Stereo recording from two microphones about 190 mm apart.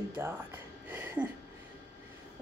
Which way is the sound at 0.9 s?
10° right (ahead or behind).